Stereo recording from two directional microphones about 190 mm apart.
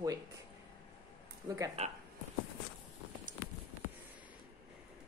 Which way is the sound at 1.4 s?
15° right (ahead or behind).